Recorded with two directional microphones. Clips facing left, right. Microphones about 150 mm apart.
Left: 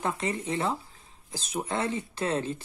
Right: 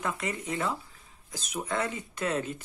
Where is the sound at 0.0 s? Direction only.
30° left (ahead or behind).